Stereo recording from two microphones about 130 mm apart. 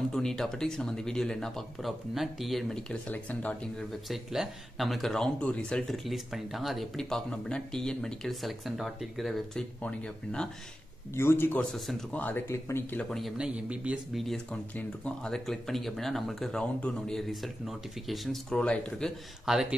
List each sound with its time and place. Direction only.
0.1 s speech: 5° left (ahead or behind)
4.1 s speech: centre (ahead or behind)
11.1 s speech: 20° left (ahead or behind)
11.7 s speech: centre (ahead or behind)
12.2 s speech: 15° left (ahead or behind)
13.1 s speech: centre (ahead or behind)
14.2 s speech: 5° left (ahead or behind)